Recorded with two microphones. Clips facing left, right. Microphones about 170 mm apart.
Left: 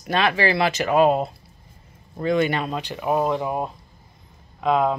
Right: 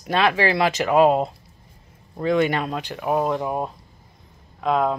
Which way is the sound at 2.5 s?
5° right (ahead or behind).